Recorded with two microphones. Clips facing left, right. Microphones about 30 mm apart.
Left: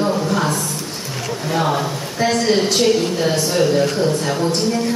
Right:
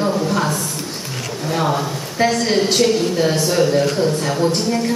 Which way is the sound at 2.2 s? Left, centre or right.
Right.